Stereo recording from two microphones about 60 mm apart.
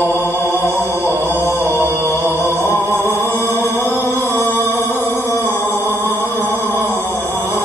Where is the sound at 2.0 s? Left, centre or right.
Left.